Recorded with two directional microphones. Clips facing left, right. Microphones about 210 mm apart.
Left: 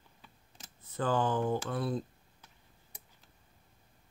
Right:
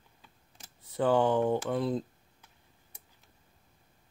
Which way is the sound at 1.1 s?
20° right (ahead or behind).